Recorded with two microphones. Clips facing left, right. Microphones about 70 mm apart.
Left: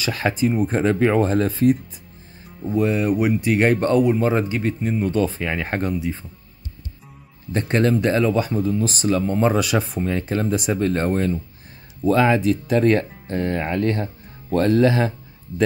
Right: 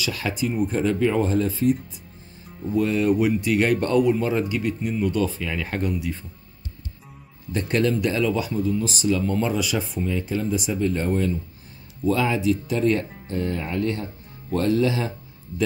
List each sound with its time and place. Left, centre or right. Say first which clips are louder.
0.0 s speech: left 5 dB; left
2.7 s speech: left 1 dB; left
7.8 s speech: left 4 dB; left